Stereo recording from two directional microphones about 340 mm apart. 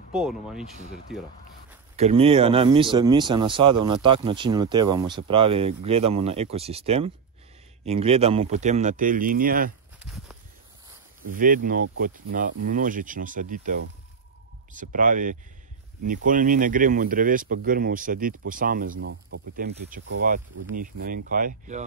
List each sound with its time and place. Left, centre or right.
0.1 s speech: centre
0.8 s speech: left
2.0 s speech: centre
9.9 s a sound: centre
11.3 s speech: right
18.9 s speech: right
19.5 s speech: right